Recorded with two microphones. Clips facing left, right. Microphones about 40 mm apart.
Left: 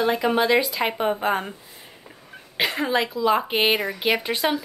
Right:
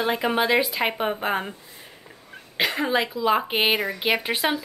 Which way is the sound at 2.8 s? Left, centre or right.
Centre.